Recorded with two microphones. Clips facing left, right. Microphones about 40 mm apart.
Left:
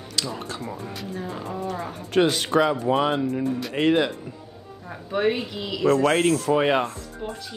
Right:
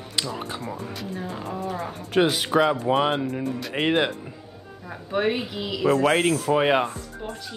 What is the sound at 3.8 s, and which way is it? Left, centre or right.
Speech, centre.